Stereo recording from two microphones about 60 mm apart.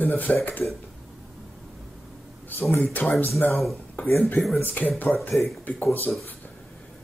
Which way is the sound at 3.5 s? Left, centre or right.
Centre.